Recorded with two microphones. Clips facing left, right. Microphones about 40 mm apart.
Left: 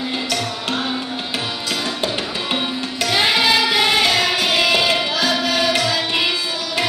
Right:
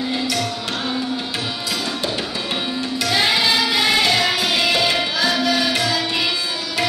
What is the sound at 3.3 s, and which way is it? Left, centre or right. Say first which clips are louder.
Music: left 2 dB; left.